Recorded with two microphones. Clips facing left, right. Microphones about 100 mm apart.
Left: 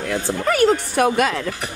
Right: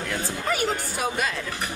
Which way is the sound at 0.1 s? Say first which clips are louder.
Left 8 dB; 60° left (ahead or behind).